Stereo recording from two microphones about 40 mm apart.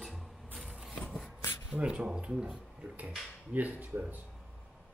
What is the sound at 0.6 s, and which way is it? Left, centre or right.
Vehicle, centre.